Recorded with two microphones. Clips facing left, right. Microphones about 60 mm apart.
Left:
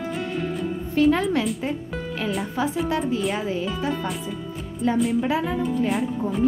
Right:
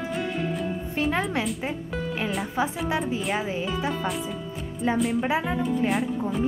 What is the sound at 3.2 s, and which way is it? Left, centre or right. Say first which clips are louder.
Speech: left 2 dB; centre.